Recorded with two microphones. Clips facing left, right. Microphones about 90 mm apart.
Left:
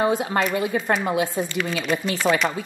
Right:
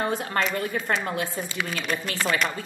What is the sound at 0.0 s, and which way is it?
A woman's voice, 15° left (ahead or behind).